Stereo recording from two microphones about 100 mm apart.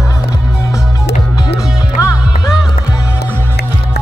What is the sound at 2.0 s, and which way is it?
Music, 35° left (ahead or behind).